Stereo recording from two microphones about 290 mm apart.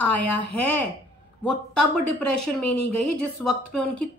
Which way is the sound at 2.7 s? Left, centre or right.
Left.